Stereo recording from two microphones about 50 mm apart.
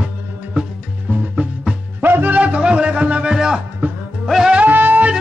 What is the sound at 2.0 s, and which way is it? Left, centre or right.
Music, right.